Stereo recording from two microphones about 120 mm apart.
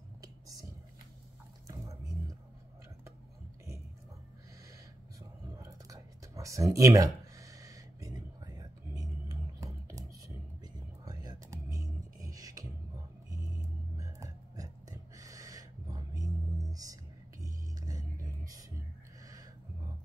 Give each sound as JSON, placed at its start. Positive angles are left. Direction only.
{"t": 0.2, "sound": "whispering", "side_deg": -30}
{"t": 1.7, "sound": "drip", "side_deg": -30}
{"t": 5.6, "sound": "a sound", "side_deg": -25}
{"t": 10.6, "sound": "music", "side_deg": -30}